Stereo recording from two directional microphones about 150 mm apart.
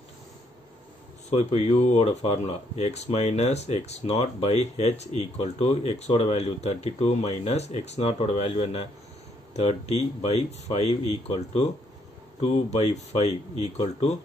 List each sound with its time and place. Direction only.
1.4 s speech: 45° left (ahead or behind)